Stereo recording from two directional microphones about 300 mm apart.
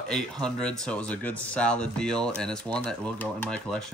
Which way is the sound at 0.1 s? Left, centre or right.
Centre.